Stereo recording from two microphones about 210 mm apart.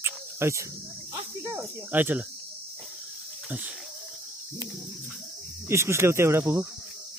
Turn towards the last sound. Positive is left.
turn(degrees=-10)  # may be behind; listen again after turning